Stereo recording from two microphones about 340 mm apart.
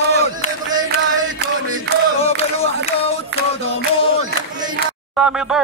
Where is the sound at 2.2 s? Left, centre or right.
Centre.